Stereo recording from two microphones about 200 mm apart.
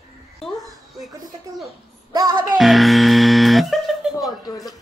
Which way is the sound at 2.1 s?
20° right (ahead or behind).